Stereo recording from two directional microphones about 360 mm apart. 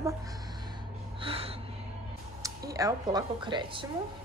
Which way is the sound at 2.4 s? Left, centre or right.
Centre.